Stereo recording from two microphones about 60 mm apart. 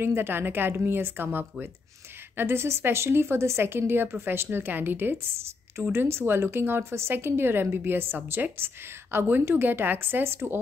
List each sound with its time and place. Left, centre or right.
0.0 s a woman's voice: right